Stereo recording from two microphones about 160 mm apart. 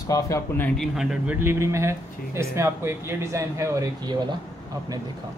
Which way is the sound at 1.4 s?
15° right (ahead or behind).